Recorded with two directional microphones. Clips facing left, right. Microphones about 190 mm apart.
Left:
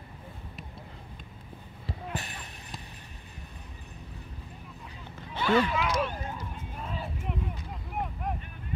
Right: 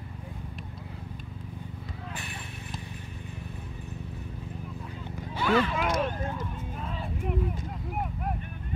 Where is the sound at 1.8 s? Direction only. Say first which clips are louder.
Left 8 dB; 40° left (ahead or behind).